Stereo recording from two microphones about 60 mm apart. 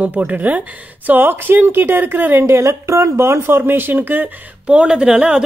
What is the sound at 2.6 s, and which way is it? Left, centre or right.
Speech, right.